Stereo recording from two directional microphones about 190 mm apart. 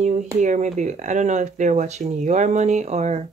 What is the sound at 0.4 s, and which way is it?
Speech, 40° right (ahead or behind).